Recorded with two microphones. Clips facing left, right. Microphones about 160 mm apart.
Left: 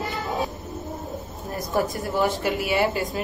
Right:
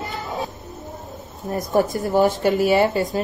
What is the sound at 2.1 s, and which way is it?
Speech, 45° right (ahead or behind).